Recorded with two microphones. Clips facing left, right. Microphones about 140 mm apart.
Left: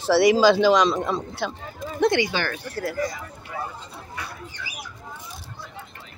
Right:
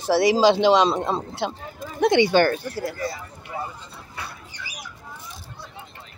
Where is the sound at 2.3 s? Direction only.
50° right (ahead or behind).